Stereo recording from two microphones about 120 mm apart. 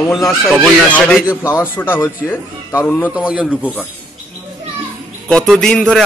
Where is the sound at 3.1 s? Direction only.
10° right (ahead or behind).